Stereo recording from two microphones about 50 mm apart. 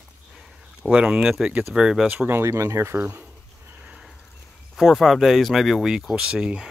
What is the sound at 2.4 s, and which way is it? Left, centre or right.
Speech, right.